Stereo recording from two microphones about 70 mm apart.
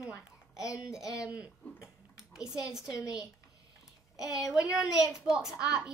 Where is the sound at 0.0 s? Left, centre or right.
Left.